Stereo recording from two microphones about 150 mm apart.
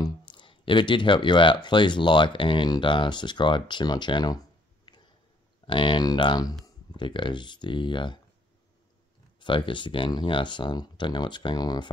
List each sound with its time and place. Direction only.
0.0 s speech: 30° left (ahead or behind)
9.4 s speech: 35° left (ahead or behind)